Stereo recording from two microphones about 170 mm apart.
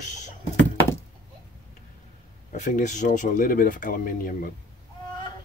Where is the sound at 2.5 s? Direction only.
45° left (ahead or behind).